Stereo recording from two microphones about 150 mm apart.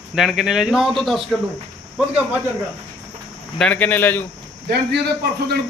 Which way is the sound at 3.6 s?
10° left (ahead or behind).